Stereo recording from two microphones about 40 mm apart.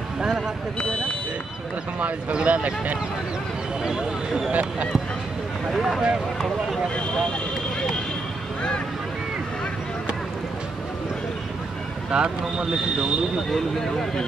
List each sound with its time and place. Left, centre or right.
0.7 s speech: left
2.0 s speech: right
4.5 s speech: right
5.7 s speech: centre
12.1 s speech: right
13.5 s speech: centre